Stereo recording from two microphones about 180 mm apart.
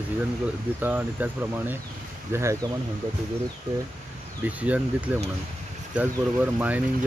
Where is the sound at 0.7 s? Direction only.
10° right (ahead or behind).